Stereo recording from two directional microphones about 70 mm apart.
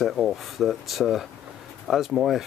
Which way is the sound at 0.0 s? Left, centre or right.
Centre.